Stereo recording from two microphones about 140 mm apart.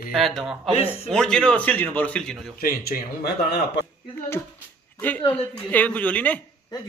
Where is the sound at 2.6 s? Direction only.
90° left.